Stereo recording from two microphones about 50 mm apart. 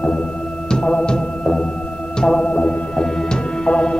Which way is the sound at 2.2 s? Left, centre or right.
Centre.